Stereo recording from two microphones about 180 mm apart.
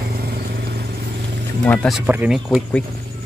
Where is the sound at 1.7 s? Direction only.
5° left (ahead or behind).